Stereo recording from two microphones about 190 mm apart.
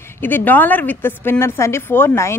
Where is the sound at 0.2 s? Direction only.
10° left (ahead or behind).